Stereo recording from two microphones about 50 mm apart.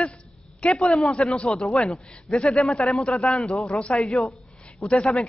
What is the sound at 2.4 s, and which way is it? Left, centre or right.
Speech, centre.